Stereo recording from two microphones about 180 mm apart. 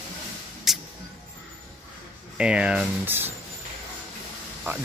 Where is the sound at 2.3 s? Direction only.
5° right (ahead or behind).